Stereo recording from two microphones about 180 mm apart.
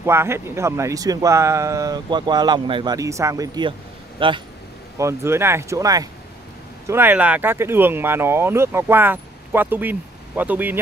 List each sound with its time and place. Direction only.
0.0 s speech: 15° right (ahead or behind)
4.9 s speech: 15° right (ahead or behind)